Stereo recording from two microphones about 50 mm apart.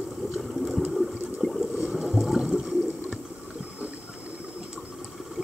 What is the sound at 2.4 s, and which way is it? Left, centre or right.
Water, centre.